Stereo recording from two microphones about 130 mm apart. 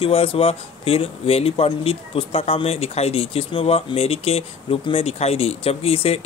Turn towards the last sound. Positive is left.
turn(degrees=50)  # may be behind; listen again after turning